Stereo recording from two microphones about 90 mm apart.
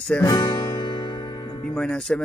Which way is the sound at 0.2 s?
50° left (ahead or behind).